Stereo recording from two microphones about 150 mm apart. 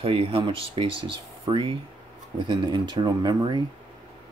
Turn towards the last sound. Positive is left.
turn(degrees=-30)  # may be behind; listen again after turning